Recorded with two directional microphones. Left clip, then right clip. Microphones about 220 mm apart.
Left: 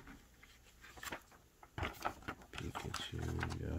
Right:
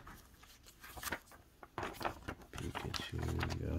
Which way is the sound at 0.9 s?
45° right (ahead or behind).